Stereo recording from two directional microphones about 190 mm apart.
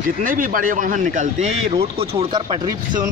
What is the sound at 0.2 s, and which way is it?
A man's voice, 45° right (ahead or behind).